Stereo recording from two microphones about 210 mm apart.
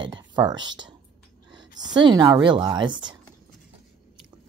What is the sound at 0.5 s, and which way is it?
Speech, 20° right (ahead or behind).